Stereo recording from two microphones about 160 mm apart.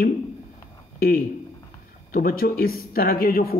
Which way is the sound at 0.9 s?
70° left (ahead or behind).